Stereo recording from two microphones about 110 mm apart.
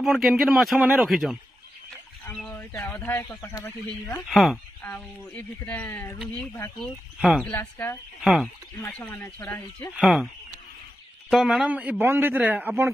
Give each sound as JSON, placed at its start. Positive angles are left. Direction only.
{"t": 0.0, "sound": "speech", "side_deg": 0}
{"t": 3.3, "sound": "speech", "side_deg": 30}
{"t": 4.3, "sound": "speech", "side_deg": 0}
{"t": 4.9, "sound": "speech", "side_deg": 15}
{"t": 6.8, "sound": "speech", "side_deg": 0}
{"t": 7.5, "sound": "speech", "side_deg": 20}
{"t": 8.2, "sound": "speech", "side_deg": 0}
{"t": 8.9, "sound": "speech", "side_deg": 15}
{"t": 9.9, "sound": "speech", "side_deg": 0}
{"t": 11.2, "sound": "a man's voice", "side_deg": 0}